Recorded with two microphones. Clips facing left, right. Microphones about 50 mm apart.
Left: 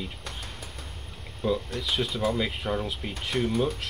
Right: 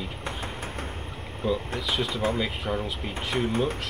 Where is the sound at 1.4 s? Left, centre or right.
Centre.